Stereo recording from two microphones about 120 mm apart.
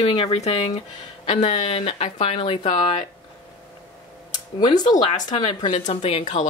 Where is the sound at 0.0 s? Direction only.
50° left (ahead or behind).